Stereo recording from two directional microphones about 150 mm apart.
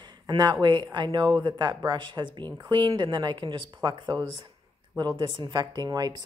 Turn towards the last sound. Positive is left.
turn(degrees=-25)  # may be behind; listen again after turning